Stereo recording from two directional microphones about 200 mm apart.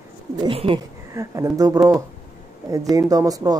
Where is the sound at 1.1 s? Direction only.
15° right (ahead or behind).